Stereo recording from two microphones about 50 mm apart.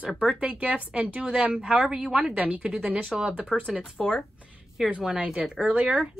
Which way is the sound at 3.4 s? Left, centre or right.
Centre.